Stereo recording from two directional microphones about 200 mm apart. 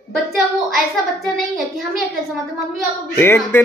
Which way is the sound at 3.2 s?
10° left (ahead or behind).